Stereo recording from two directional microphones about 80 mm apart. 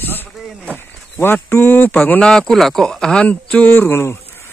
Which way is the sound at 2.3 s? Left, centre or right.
Centre.